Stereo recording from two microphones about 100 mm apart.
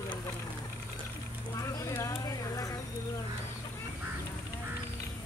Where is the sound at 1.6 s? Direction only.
30° left (ahead or behind).